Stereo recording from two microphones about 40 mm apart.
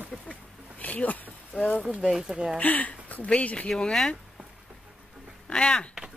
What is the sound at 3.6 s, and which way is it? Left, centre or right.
Speech, centre.